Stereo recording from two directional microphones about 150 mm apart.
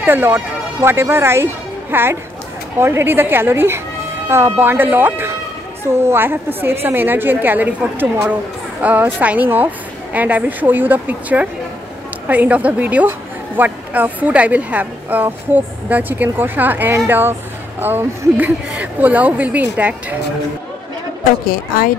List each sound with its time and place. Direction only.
0.0 s a woman's voice: 15° right (ahead or behind)
21.2 s a woman's voice: 70° left (ahead or behind)